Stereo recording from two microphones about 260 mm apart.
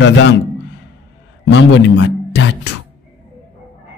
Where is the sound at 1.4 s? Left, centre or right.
Left.